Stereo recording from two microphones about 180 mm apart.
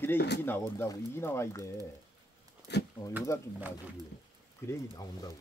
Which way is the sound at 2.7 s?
70° left (ahead or behind).